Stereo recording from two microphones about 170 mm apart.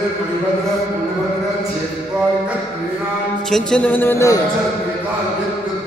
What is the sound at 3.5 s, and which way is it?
Speech, 5° left (ahead or behind).